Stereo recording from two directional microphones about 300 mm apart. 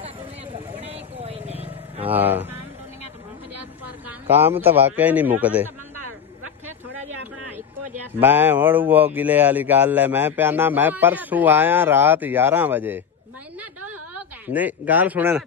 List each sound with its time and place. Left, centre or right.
0.7 s vehicle: centre
2.0 s speech: centre
4.3 s a man's voice: centre
8.2 s speech: centre
14.5 s a man's voice: centre